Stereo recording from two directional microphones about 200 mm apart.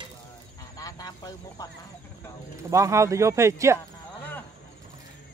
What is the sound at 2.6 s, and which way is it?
Speech, 15° right (ahead or behind).